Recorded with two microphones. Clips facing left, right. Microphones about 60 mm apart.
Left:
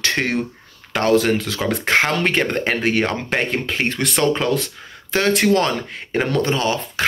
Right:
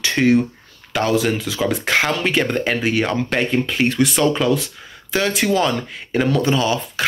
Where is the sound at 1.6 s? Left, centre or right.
Left.